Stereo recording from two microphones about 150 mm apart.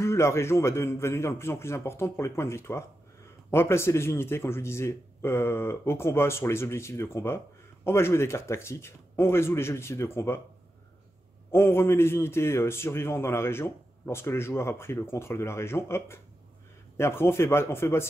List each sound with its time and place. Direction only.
0.0 s a man's voice: 20° left (ahead or behind)
11.5 s a man's voice: 15° left (ahead or behind)